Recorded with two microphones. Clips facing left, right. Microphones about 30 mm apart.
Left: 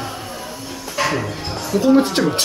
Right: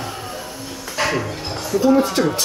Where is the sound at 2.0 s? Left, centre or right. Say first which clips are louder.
Left 1 dB; left.